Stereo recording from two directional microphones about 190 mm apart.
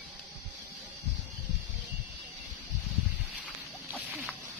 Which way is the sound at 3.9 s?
5° right (ahead or behind).